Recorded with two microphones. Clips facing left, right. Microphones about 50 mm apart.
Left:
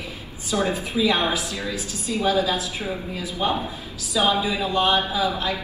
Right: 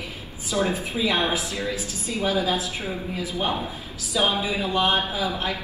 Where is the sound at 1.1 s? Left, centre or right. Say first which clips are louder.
Right 2 dB; left.